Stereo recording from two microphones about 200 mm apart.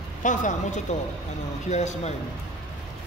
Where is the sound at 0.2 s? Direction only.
40° left (ahead or behind).